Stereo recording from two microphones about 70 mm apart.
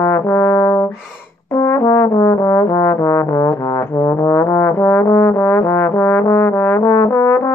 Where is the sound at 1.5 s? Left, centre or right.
Left.